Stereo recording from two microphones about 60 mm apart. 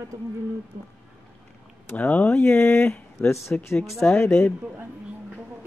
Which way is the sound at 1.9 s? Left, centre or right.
Left.